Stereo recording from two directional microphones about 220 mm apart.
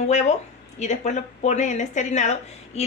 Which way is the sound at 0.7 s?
30° left (ahead or behind).